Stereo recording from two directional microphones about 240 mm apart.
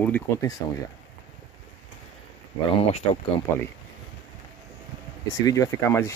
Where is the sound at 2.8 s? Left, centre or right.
Left.